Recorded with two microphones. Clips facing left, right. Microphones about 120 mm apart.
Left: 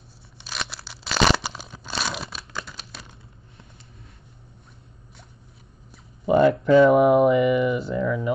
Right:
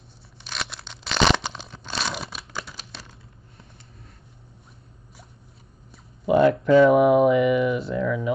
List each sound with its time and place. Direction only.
0.4 s crunch: centre (ahead or behind)
5.9 s speech: centre (ahead or behind)